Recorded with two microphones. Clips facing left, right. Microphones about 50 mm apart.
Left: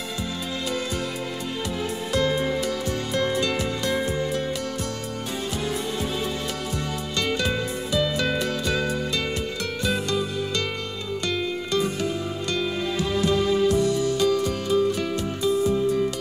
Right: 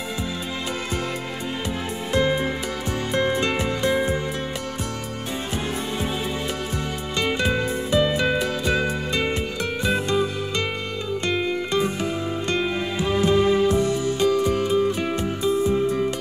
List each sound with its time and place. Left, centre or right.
2.1 s music: right
7.2 s music: right